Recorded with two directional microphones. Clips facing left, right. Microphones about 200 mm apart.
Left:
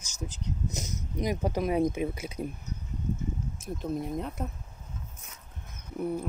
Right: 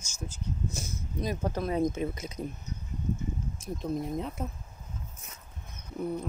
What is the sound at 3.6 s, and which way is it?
Speech, centre (ahead or behind).